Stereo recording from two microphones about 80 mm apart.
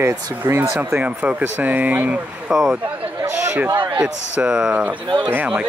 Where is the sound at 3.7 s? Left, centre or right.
Right.